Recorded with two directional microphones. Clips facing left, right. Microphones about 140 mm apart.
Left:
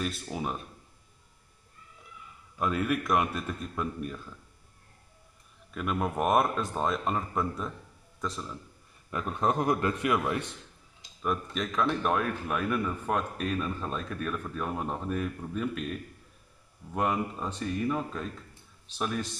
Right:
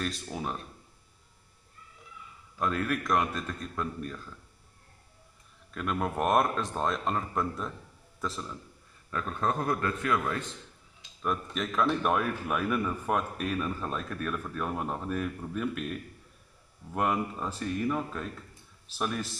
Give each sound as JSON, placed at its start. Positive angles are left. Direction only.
{"t": 0.0, "sound": "a man's voice", "side_deg": 5}
{"t": 2.6, "sound": "a man's voice", "side_deg": 5}
{"t": 5.7, "sound": "a man's voice", "side_deg": 5}
{"t": 9.1, "sound": "a man's voice", "side_deg": 20}
{"t": 11.2, "sound": "a man's voice", "side_deg": 0}